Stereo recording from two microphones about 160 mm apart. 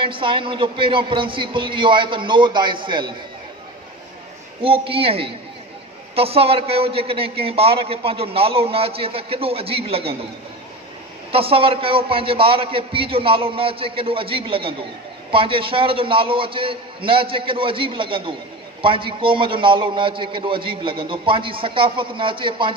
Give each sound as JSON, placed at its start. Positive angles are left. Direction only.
{"t": 0.0, "sound": "a man's voice", "side_deg": -30}
{"t": 4.6, "sound": "a man's voice", "side_deg": -35}
{"t": 11.3, "sound": "a man's voice", "side_deg": -35}